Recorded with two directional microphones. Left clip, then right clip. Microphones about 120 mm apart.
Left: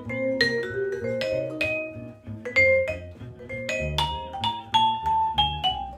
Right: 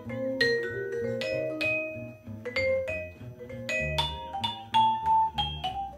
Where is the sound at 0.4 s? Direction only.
35° left (ahead or behind).